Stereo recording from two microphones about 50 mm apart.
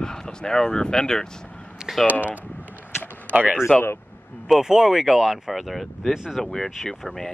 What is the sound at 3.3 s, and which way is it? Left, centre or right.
Speech, right.